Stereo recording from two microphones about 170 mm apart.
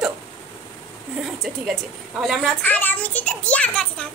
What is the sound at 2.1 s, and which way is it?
Speech, centre (ahead or behind).